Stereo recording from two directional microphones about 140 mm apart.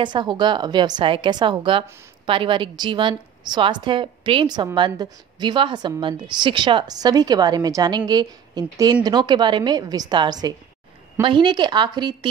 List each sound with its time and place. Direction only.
0.0 s a woman's voice: 35° right (ahead or behind)